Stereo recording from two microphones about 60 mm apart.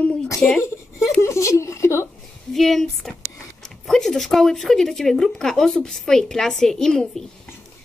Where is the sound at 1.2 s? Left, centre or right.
Left.